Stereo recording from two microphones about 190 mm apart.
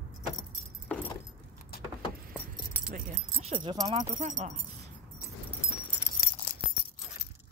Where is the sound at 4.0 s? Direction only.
40° right (ahead or behind).